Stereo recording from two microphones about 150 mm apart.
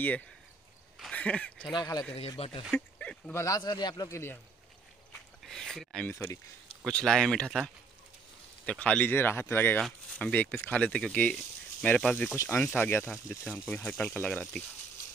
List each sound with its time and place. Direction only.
0.9 s a sound: 5° left (ahead or behind)
1.6 s a man's voice: 30° left (ahead or behind)
2.1 s speech: 40° left (ahead or behind)
3.0 s bow-wow: 10° left (ahead or behind)
3.3 s a man's voice: 25° left (ahead or behind)
5.4 s speech: centre (ahead or behind)
6.1 s speech: 15° left (ahead or behind)
6.8 s speech: 5° left (ahead or behind)